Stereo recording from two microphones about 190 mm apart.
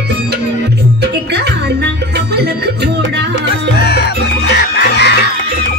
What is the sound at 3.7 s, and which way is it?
Music, 60° left (ahead or behind).